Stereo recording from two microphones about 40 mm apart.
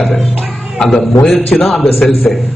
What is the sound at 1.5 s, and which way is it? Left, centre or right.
Speech, left.